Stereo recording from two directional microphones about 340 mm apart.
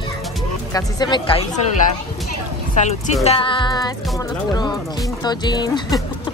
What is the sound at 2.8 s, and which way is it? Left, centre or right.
Speech, left.